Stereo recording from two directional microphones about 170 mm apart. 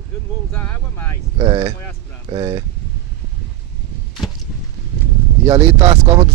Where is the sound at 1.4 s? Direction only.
25° right (ahead or behind).